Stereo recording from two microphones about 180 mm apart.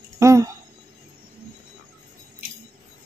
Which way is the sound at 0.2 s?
15° right (ahead or behind).